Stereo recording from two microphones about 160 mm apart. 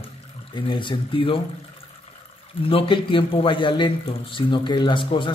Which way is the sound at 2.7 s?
35° left (ahead or behind).